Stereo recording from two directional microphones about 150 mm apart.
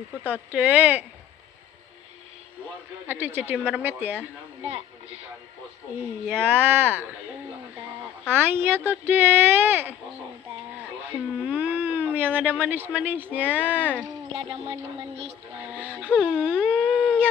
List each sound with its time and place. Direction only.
0.2 s speech: 10° right (ahead or behind)
3.1 s speech: 15° right (ahead or behind)
4.6 s a woman's voice: 45° right (ahead or behind)
6.3 s speech: 15° right (ahead or behind)
8.3 s speech: 15° right (ahead or behind)
11.1 s speech: 10° right (ahead or behind)
14.3 s speech: 35° right (ahead or behind)
15.7 s speech: 10° right (ahead or behind)
16.9 s a sound: 5° right (ahead or behind)